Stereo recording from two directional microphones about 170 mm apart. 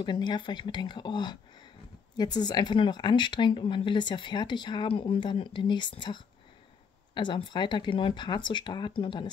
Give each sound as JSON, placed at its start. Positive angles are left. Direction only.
{"t": 0.0, "sound": "speech", "side_deg": 25}